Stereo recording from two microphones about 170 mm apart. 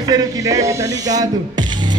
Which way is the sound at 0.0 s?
25° right (ahead or behind).